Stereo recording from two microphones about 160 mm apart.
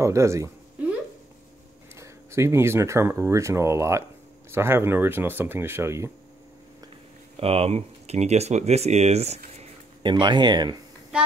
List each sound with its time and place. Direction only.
0.0 s speech: 20° right (ahead or behind)
2.0 s speech: 15° right (ahead or behind)
7.3 s speech: 40° right (ahead or behind)
10.0 s speech: 30° right (ahead or behind)
11.1 s speech: 5° right (ahead or behind)